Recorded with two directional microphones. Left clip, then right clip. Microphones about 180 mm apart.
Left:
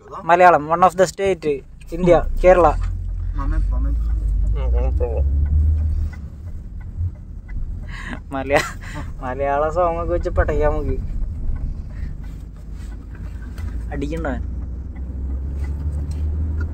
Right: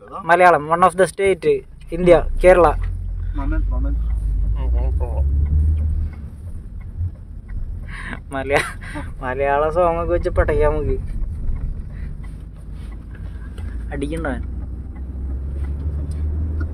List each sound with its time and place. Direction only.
0.2 s speech: centre (ahead or behind)
4.6 s a sound: 55° left (ahead or behind)
7.9 s speech: centre (ahead or behind)
9.2 s speech: 15° right (ahead or behind)
13.8 s speech: centre (ahead or behind)